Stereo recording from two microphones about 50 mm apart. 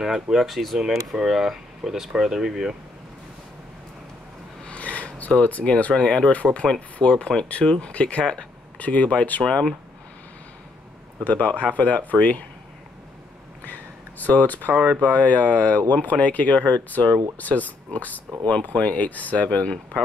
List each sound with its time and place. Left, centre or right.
0.0 s speech: centre
4.6 s speech: left
7.9 s speech: left
9.4 s speech: centre
11.2 s speech: left
13.7 s a sound: left
14.8 s speech: left